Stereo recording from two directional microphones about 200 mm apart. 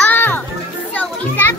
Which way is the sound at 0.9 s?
10° left (ahead or behind).